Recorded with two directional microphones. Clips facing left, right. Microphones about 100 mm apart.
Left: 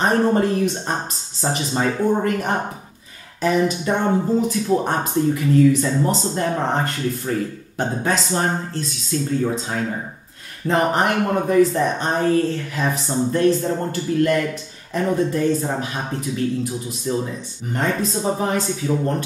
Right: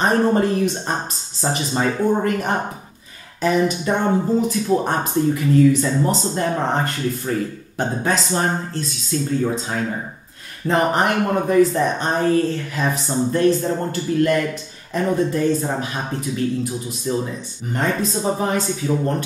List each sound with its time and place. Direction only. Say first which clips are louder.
0.0 s speech: even; 15° right (ahead or behind)
1.9 s speech: even; 25° right (ahead or behind)
3.9 s speech: even; 25° right (ahead or behind)
4.5 s speech: even; 15° right (ahead or behind)